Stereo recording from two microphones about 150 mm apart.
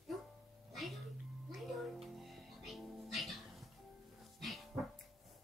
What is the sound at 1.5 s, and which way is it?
Music, centre (ahead or behind).